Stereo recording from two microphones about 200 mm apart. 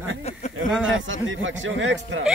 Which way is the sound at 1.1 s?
70° right (ahead or behind).